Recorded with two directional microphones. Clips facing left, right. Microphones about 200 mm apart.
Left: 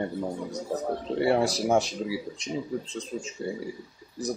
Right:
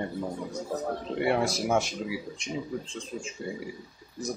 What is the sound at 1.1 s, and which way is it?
Speech, 35° left (ahead or behind).